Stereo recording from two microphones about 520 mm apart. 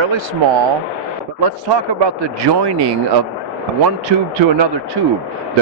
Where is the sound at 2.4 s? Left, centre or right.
Right.